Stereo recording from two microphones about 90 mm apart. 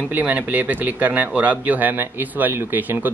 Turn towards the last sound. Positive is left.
turn(degrees=-20)  # may be behind; listen again after turning